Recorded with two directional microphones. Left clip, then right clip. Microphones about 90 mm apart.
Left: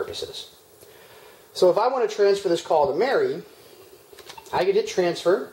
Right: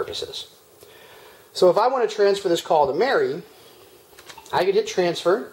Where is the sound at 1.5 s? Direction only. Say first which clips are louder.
Right 2 dB; 25° right (ahead or behind).